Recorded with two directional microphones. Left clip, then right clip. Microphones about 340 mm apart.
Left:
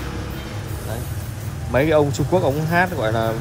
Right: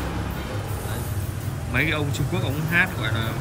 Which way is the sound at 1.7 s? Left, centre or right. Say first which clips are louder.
Left 8 dB; centre.